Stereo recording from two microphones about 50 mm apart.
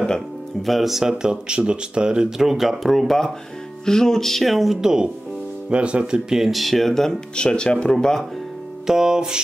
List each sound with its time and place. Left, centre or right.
0.6 s speech: centre
5.7 s speech: right
6.3 s speech: centre
7.3 s speech: centre
8.8 s speech: centre